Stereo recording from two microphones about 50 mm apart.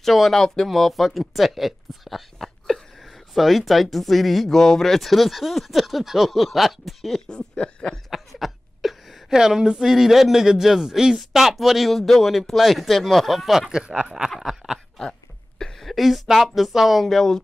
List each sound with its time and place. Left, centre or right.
0.0 s a woman's voice: centre
7.2 s a sound: centre
8.1 s a woman's voice: centre
13.6 s a woman's voice: centre
15.8 s a woman's voice: centre